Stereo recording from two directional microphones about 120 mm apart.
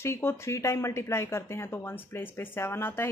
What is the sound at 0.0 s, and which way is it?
A woman's voice, 20° left (ahead or behind).